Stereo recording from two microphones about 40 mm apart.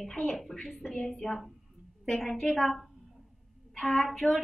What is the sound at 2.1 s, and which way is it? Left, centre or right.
A woman's voice, centre.